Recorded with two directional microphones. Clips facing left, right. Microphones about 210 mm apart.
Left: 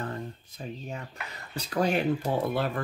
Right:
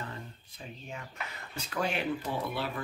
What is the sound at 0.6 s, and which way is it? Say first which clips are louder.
Speech: left 6 dB; 45° left (ahead or behind).